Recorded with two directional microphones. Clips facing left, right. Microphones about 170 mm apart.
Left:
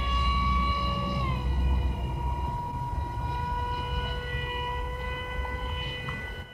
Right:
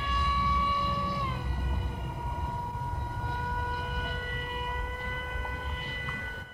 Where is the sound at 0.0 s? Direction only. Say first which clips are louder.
Even; 15° left (ahead or behind).